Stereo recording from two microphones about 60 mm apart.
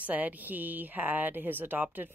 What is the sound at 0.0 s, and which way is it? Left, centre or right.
Speech, right.